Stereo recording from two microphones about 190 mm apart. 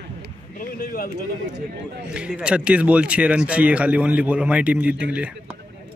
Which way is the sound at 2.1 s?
5° right (ahead or behind).